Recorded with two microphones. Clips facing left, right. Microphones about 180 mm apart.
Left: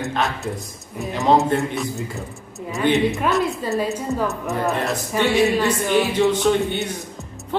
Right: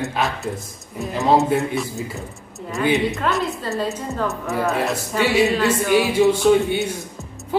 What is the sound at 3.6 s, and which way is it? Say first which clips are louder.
Speech: left 2 dB; 10° left (ahead or behind).